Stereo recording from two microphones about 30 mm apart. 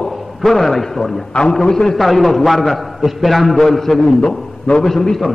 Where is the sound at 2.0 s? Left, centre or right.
Centre.